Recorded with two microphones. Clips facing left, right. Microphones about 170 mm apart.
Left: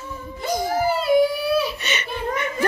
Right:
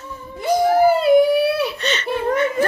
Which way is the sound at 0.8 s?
60° right (ahead or behind).